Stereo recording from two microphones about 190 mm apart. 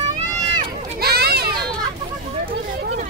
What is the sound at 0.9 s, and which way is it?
Children playing, 55° right (ahead or behind).